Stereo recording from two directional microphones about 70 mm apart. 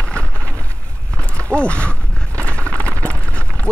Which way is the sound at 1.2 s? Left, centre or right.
Centre.